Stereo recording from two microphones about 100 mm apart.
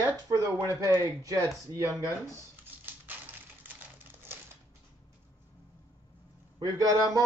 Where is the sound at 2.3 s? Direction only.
20° right (ahead or behind).